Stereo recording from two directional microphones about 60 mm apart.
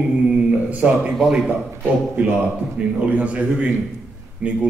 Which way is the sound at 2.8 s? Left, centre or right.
Right.